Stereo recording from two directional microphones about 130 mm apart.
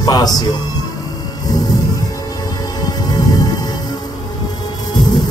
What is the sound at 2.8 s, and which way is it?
Music, 30° left (ahead or behind).